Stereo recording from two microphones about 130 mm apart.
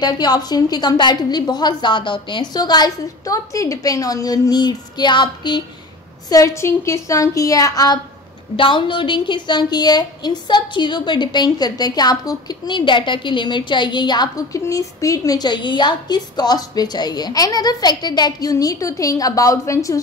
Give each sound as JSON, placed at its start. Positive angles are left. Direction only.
{"t": 0.0, "sound": "a woman's voice", "side_deg": 30}
{"t": 8.5, "sound": "a woman's voice", "side_deg": 40}